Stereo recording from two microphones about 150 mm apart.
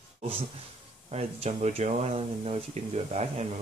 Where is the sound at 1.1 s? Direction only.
45° right (ahead or behind).